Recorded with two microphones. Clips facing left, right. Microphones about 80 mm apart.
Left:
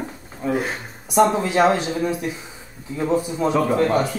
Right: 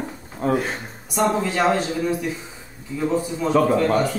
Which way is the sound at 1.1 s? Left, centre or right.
Left.